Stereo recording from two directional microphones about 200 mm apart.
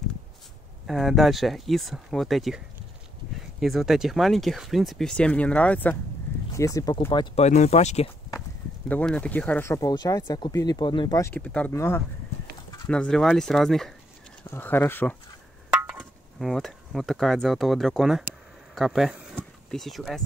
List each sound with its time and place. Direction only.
0.8 s speech: centre (ahead or behind); by 7.4 s 20° left (ahead or behind)
7.4 s speech: 35° left (ahead or behind)
8.8 s speech: 5° left (ahead or behind)
15.7 s speech: 5° right (ahead or behind)